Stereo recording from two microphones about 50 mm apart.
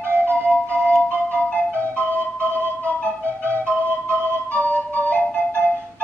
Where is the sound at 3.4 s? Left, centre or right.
Right.